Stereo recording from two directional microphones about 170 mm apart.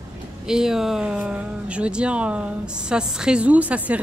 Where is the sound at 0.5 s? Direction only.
5° right (ahead or behind).